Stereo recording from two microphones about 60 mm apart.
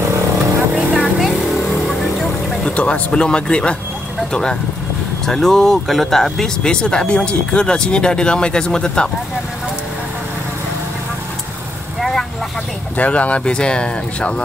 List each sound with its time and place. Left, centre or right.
0.9 s vehicle: centre
2.6 s speech: centre
12.0 s vehicle: centre
12.9 s speech: left